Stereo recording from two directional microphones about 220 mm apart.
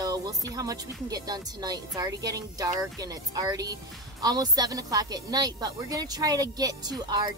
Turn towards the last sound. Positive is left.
turn(degrees=-20)  # may be behind; listen again after turning